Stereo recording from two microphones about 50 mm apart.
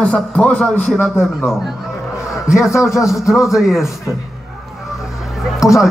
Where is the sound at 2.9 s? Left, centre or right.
Left.